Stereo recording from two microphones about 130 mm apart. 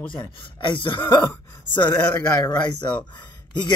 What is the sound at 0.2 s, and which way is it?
Speech, 40° left (ahead or behind).